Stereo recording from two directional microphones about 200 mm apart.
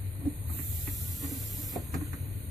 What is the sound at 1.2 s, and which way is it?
Hiss, centre (ahead or behind).